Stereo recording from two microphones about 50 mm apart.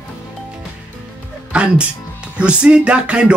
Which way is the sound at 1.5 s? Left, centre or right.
Centre.